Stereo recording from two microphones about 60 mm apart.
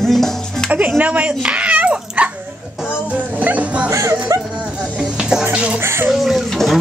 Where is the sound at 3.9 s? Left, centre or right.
Right.